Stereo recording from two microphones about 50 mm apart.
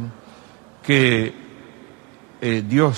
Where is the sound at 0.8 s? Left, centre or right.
Centre.